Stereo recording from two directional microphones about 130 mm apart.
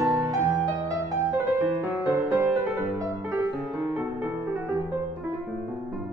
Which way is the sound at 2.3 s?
10° right (ahead or behind).